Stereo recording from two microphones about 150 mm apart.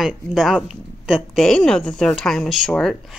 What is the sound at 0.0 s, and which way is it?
A woman's voice, centre (ahead or behind).